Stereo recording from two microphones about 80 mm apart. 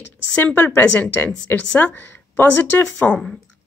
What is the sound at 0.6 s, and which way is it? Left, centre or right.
A woman's voice, left.